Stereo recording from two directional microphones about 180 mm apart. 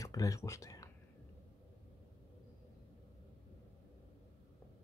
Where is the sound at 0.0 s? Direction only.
20° left (ahead or behind).